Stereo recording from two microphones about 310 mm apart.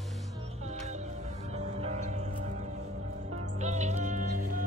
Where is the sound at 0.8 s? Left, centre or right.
Right.